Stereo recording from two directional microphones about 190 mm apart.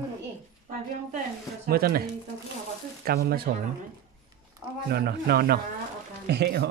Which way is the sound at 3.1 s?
55° right (ahead or behind).